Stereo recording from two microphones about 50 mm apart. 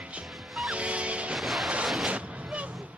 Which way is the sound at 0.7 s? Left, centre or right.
Right.